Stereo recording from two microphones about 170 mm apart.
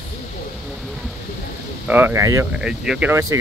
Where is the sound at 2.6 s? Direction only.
5° right (ahead or behind).